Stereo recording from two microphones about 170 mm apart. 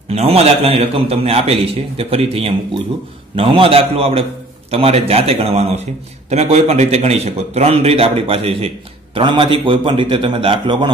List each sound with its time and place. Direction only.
0.1 s a man's voice: 35° right (ahead or behind)